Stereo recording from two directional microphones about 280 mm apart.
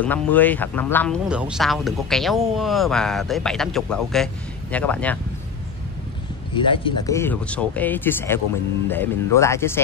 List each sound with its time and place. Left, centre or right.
0.0 s speech: centre
6.5 s speech: centre